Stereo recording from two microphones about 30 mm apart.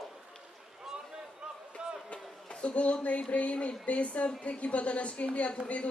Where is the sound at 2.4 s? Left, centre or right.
Left.